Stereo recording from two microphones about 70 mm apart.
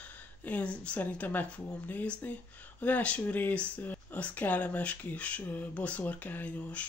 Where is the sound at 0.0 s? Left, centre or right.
Left.